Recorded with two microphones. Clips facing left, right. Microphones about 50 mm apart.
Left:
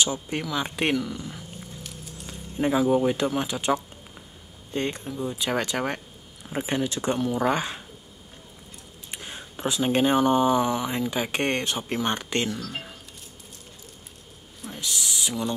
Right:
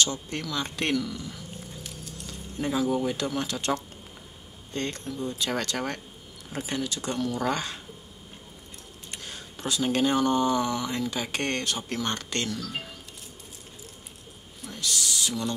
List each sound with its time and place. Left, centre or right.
0.0 s speech: centre
9.1 s speech: centre
14.7 s a sound: centre